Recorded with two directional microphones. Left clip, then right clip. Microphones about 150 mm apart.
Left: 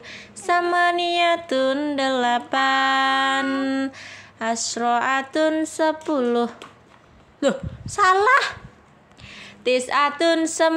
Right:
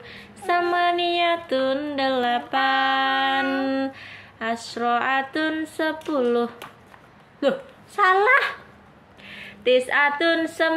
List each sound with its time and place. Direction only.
0.0 s a sound: 55° left (ahead or behind)
7.3 s speech: 45° left (ahead or behind)
9.2 s speech: 25° left (ahead or behind); by 10.8 s 40° left (ahead or behind)